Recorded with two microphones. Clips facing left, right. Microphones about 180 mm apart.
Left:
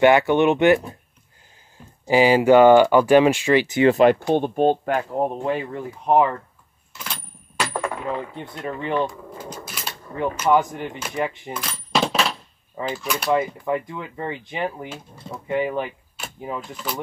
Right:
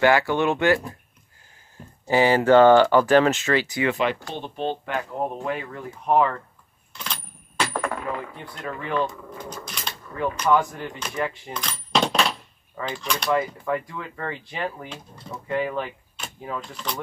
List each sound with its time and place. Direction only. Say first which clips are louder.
0.0 s speech: left 4 dB; 20° left (ahead or behind)
2.0 s speech: left 3 dB; 15° left (ahead or behind)
3.8 s speech: left 9 dB; 45° left (ahead or behind)
5.4 s speech: left 4 dB; 25° left (ahead or behind)
6.9 s a sound: even; 5° left (ahead or behind)
8.2 s speech: left 4 dB; 25° left (ahead or behind)
9.7 s a sound: left 1 dB; 5° left (ahead or behind)
10.4 s speech: left 2 dB; 20° left (ahead or behind)
11.0 s keys jangling: left 1 dB; 15° left (ahead or behind)
12.8 s mechanisms: left 2 dB; 5° left (ahead or behind)
13.3 s speech: left 2 dB; 20° left (ahead or behind)
16.9 s mechanisms: left 2 dB; 5° left (ahead or behind)